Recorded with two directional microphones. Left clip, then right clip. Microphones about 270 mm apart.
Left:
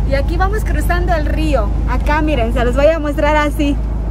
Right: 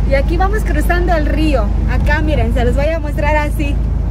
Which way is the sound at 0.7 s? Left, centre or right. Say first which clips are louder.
Right 2 dB; centre.